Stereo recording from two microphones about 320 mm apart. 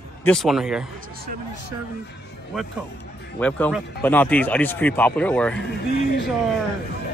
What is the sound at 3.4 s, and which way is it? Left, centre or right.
Speech, centre.